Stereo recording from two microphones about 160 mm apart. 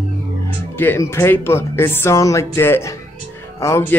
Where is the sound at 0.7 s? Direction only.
15° left (ahead or behind).